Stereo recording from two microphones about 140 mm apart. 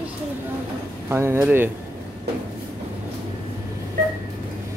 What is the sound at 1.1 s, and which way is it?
Speech, 15° right (ahead or behind).